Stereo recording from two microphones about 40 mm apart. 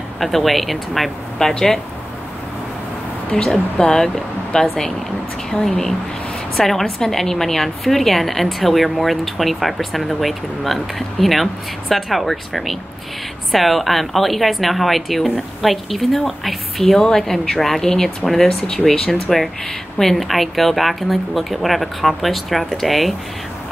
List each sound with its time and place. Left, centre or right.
0.2 s a woman's voice: centre
1.4 s speech: centre
3.3 s a woman's voice: centre